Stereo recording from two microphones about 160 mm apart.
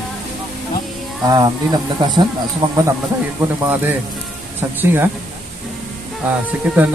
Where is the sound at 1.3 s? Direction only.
25° right (ahead or behind).